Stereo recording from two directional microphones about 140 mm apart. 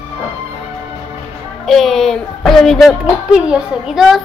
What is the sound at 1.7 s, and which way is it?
Speech, centre (ahead or behind).